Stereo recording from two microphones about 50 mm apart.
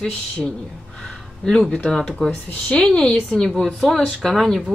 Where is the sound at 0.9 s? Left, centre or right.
Centre.